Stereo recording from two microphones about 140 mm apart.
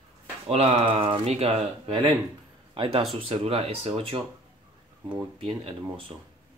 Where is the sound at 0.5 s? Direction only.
45° right (ahead or behind).